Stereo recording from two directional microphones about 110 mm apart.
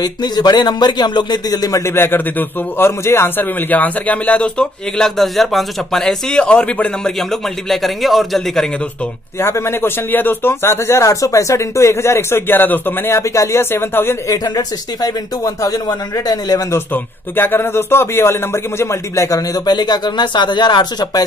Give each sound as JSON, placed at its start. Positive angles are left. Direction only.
{"t": 0.0, "sound": "a man's voice", "side_deg": 40}
{"t": 9.4, "sound": "a man's voice", "side_deg": 20}
{"t": 14.4, "sound": "speech", "side_deg": 35}
{"t": 16.9, "sound": "a man's voice", "side_deg": 20}